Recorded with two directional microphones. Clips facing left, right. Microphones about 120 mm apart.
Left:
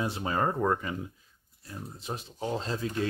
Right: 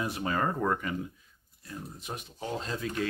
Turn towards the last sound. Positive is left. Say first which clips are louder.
# left 2 dB
turn(degrees=30)  # may be behind; listen again after turning